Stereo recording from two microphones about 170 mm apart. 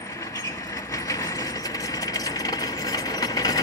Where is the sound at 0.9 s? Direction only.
20° left (ahead or behind).